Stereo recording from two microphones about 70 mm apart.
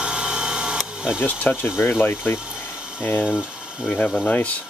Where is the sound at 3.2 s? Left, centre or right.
Centre.